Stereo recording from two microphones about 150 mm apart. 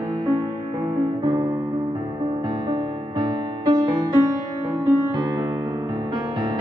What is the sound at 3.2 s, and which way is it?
Music, 30° right (ahead or behind).